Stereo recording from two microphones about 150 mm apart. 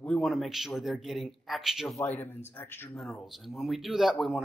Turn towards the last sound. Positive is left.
turn(degrees=0)  # may be behind; listen again after turning